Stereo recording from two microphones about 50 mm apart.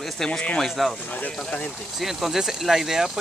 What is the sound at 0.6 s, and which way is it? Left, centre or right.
Speech, centre.